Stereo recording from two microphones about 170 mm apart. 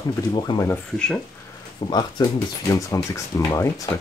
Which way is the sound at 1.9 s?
25° left (ahead or behind).